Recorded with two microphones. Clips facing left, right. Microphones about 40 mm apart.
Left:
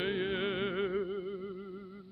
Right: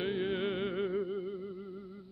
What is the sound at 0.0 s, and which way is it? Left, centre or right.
Music, centre.